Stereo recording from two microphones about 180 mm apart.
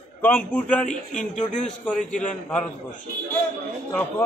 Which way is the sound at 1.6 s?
5° left (ahead or behind).